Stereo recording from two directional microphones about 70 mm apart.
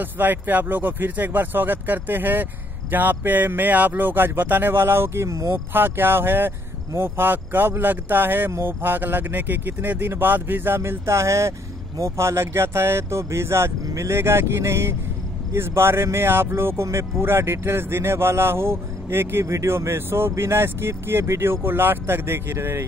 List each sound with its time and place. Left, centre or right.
0.0 s speech: right